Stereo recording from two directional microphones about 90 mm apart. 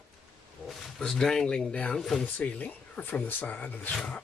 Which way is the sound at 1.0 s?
5° left (ahead or behind).